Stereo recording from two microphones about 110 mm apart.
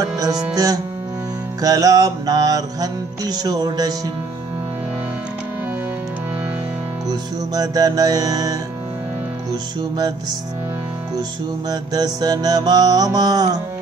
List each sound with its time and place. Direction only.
0.0 s music: 35° right (ahead or behind)
7.1 s music: 35° right (ahead or behind)
9.8 s music: 40° right (ahead or behind)
11.7 s music: 35° right (ahead or behind)